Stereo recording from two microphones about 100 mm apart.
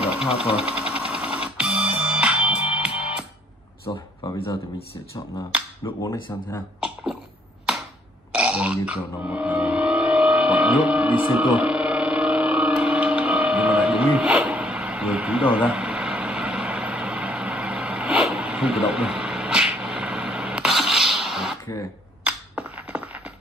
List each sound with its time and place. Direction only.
0.3 s speech: 75° left (ahead or behind)
0.6 s a sound: 15° right (ahead or behind)
1.6 s music: 10° right (ahead or behind)
3.9 s speech: 50° left (ahead or behind)
4.4 s speech: 70° left (ahead or behind)
5.8 s speech: 30° left (ahead or behind)
8.3 s music: 10° right (ahead or behind)
22.2 s a sound: 15° right (ahead or behind)